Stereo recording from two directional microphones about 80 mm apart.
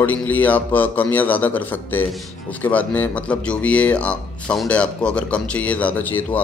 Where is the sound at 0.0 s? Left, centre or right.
Left.